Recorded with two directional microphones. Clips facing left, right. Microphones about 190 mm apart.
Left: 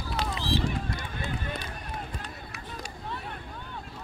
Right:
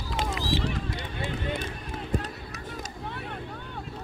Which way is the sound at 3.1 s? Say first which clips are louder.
Even; 60° right (ahead or behind).